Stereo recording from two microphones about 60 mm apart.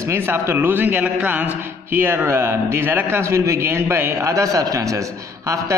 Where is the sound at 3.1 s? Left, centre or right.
Right.